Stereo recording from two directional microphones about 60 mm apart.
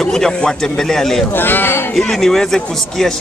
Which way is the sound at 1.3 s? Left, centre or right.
Left.